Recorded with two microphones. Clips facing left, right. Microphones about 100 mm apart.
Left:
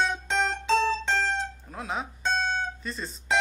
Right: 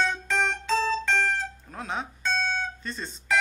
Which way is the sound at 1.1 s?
Centre (ahead or behind).